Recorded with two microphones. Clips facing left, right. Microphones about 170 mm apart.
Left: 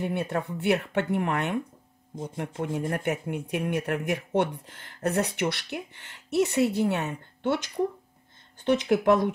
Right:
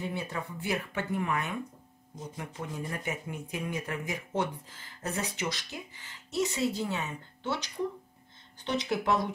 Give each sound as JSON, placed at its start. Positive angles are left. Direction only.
{"t": 0.0, "sound": "speech", "side_deg": 60}